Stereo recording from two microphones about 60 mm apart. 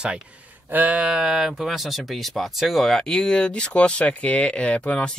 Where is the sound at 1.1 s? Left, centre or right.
Centre.